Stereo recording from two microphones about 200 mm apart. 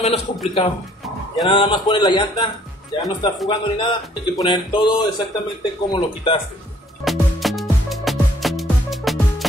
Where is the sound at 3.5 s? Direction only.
25° left (ahead or behind).